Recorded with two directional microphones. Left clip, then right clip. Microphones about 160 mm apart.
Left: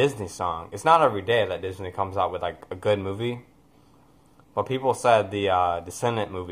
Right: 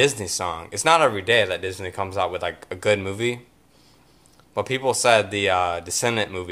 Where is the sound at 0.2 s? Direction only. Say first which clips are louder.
Right 1 dB; 15° right (ahead or behind).